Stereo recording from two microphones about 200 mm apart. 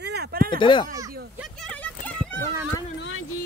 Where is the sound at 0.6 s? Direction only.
25° left (ahead or behind).